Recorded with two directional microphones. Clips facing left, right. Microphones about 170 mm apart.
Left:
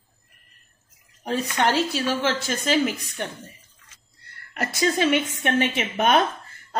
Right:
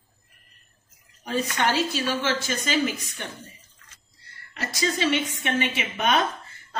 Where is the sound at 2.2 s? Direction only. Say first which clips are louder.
Left 2 dB; 55° left (ahead or behind).